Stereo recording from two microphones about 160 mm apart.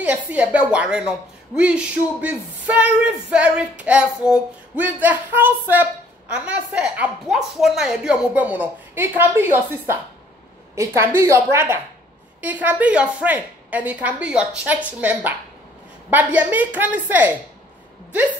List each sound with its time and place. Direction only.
0.0 s speech: 10° right (ahead or behind)